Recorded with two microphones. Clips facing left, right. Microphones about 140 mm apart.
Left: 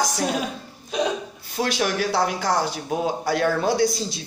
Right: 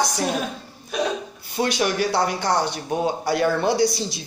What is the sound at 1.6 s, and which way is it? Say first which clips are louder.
Speech: right 2 dB; centre (ahead or behind).